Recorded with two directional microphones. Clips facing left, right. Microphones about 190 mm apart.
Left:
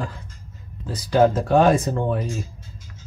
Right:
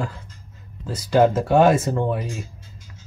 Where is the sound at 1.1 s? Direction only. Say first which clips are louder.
Even; 5° right (ahead or behind).